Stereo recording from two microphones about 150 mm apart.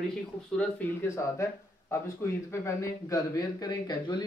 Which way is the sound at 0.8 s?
15° left (ahead or behind).